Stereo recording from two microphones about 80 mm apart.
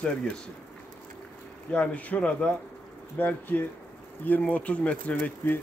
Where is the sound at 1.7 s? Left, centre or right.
Centre.